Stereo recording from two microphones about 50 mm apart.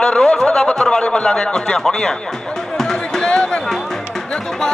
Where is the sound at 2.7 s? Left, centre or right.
Centre.